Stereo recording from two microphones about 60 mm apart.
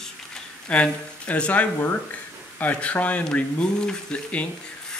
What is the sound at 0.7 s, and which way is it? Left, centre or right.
Speech, left.